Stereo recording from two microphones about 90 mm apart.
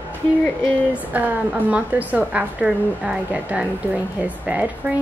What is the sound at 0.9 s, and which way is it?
A woman's voice, 15° right (ahead or behind).